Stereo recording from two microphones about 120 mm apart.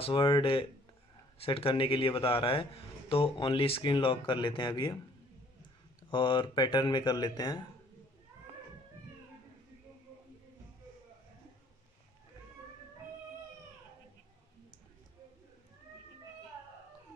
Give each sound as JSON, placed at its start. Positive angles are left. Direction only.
{"t": 0.0, "sound": "speech", "side_deg": 45}
{"t": 6.0, "sound": "speech", "side_deg": 40}